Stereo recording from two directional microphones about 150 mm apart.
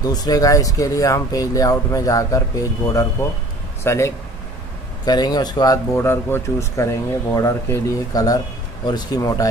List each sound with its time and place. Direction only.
0.0 s speech: 25° left (ahead or behind)
5.9 s speech: 15° left (ahead or behind)